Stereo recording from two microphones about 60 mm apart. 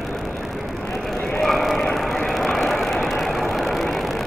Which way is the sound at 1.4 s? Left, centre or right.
Centre.